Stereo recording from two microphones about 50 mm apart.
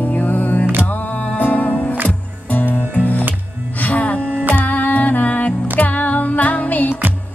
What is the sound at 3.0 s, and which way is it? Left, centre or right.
Music, left.